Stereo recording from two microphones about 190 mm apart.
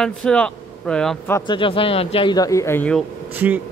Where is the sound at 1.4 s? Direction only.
25° left (ahead or behind); by 3.0 s 10° left (ahead or behind).